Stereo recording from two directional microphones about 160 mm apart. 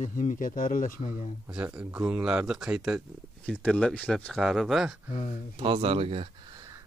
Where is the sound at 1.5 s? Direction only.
10° right (ahead or behind).